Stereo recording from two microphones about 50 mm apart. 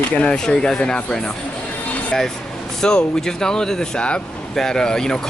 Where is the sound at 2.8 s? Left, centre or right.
Centre.